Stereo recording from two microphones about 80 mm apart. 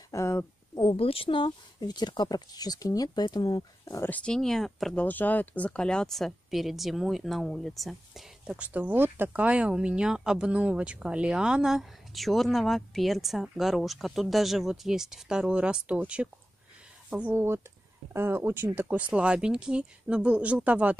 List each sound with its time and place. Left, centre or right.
0.1 s speech: left
0.7 s speech: left
4.2 s speech: centre
4.9 s speech: left; by 8.3 s centre
8.5 s speech: centre
17.2 s speech: right
18.8 s speech: centre